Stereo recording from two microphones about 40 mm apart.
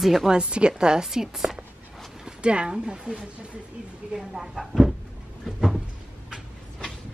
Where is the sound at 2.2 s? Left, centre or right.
Right.